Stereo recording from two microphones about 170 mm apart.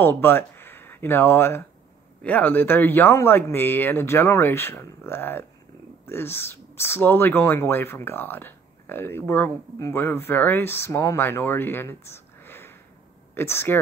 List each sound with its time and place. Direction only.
0.0 s speech: 10° left (ahead or behind)